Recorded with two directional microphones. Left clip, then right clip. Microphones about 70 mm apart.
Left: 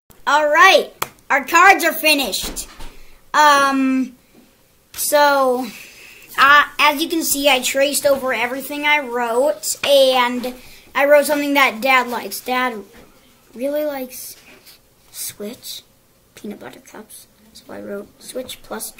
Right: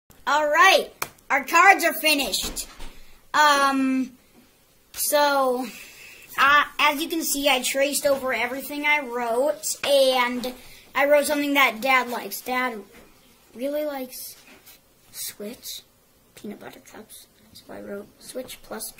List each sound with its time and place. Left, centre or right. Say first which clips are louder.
0.2 s a child's voice: left 6 dB; centre
5.1 s a child's voice: left 6 dB; centre
15.2 s a child's voice: left 5 dB; centre